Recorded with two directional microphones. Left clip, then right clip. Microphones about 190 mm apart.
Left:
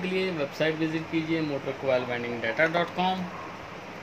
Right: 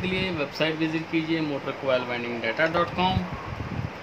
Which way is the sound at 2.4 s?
15° left (ahead or behind).